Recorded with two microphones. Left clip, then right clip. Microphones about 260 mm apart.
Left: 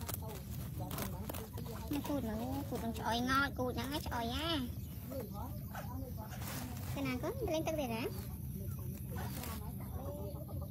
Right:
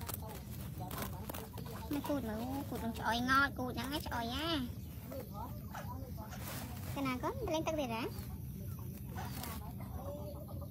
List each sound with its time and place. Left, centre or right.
0.9 s a sound: centre
1.9 s speech: centre
7.0 s speech: centre